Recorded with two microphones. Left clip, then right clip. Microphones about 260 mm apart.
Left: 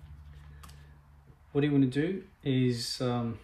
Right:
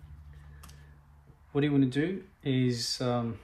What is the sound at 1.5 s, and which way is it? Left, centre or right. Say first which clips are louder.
Speech: even; right.